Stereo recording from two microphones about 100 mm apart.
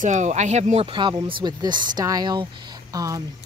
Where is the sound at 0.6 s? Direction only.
75° right (ahead or behind).